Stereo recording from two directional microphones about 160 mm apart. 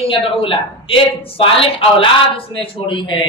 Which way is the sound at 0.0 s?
35° left (ahead or behind).